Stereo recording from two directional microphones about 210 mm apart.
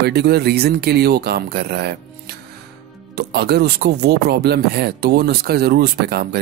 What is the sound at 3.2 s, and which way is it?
Speech, 50° right (ahead or behind).